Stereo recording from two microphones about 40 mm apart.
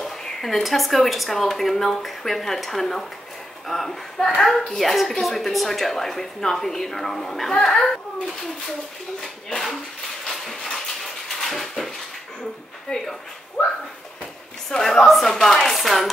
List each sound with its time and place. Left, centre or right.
0.0 s speech: centre
10.2 s a sound: centre
11.2 s dishes: centre
12.9 s speech: left
13.6 s speech: left
14.8 s speech: centre